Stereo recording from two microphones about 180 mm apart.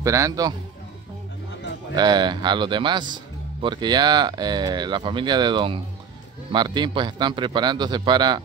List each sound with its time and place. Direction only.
0.0 s a man's voice: 15° right (ahead or behind)
2.0 s speech: 25° right (ahead or behind)